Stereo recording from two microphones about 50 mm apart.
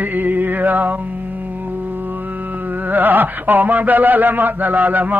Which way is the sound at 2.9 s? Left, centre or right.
Right.